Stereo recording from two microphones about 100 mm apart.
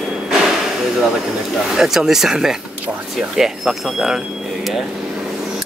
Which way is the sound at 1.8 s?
5° right (ahead or behind).